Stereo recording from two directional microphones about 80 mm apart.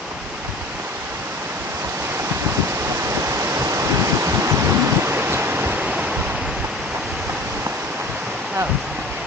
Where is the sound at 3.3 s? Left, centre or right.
Right; by 6.2 s centre.